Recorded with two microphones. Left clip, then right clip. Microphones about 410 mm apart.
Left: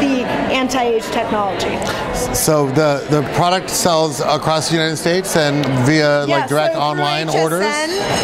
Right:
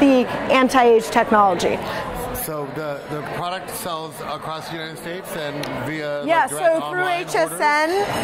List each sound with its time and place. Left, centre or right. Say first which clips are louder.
0.0 s a sound: even; right
2.4 s speech: left 13 dB; left
7.3 s a woman's voice: even; right